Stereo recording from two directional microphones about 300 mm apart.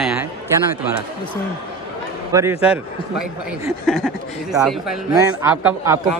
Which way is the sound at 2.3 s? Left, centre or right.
Centre.